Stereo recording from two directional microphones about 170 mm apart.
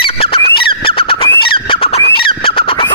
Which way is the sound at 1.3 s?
30° left (ahead or behind).